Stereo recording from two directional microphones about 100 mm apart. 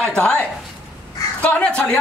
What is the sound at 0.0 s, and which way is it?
Speech, 10° left (ahead or behind).